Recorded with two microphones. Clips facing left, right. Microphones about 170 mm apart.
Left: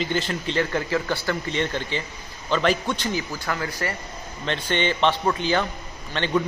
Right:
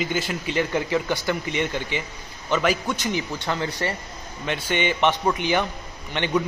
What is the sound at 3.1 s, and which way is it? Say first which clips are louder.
Speech: right 1 dB; 25° right (ahead or behind).